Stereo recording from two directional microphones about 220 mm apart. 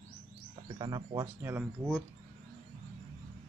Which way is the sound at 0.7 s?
20° right (ahead or behind).